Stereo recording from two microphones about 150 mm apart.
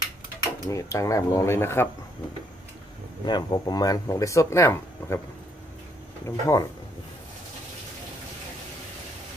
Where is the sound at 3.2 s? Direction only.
25° left (ahead or behind).